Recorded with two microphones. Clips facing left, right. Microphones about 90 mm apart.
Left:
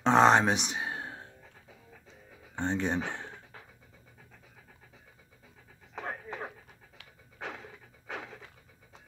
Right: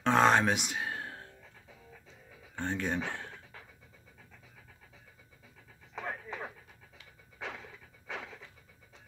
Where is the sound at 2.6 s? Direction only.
25° left (ahead or behind).